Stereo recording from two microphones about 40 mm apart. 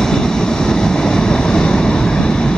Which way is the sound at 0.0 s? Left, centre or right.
Centre.